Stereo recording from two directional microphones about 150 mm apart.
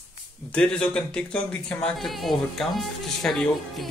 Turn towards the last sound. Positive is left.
turn(degrees=0)  # may be behind; listen again after turning